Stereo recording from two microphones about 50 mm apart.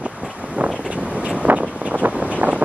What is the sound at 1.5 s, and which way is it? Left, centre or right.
Vehicle, right.